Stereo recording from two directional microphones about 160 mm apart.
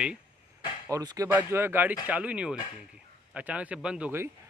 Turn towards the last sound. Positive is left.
turn(degrees=-10)  # may be behind; listen again after turning